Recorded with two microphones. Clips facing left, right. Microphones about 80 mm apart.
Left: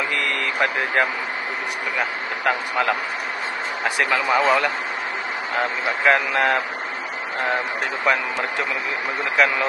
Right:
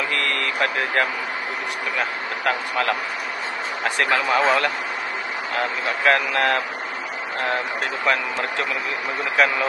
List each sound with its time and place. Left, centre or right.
0.1 s vehicle: centre
2.0 s a man's voice: left
8.0 s a man's voice: centre
9.4 s speech: centre